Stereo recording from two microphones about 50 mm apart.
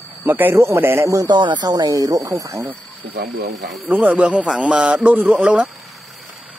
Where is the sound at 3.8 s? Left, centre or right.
Right.